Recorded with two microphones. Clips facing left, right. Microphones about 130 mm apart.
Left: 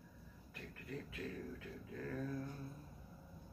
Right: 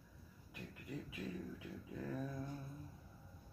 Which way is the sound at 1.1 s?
15° right (ahead or behind).